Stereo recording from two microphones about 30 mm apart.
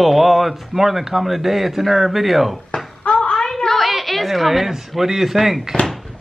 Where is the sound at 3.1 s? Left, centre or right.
Centre.